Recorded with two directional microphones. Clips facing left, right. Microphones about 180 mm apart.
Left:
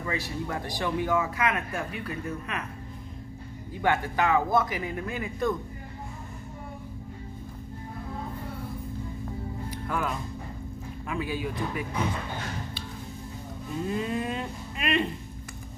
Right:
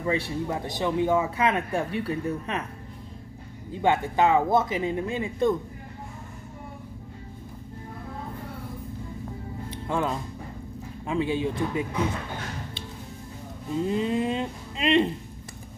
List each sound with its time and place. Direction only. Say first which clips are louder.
0.0 s speech: right 5 dB; 25° right (ahead or behind)
3.7 s speech: right 3 dB; 25° right (ahead or behind)
9.7 s music: right 4 dB; 25° right (ahead or behind)
11.1 s speech: right 6 dB; 25° right (ahead or behind)
13.7 s speech: right 4 dB; 25° right (ahead or behind)